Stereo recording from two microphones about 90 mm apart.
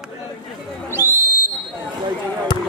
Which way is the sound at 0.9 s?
25° right (ahead or behind).